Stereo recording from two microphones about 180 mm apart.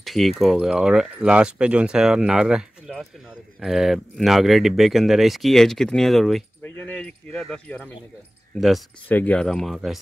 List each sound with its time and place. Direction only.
0.0 s speech: centre (ahead or behind)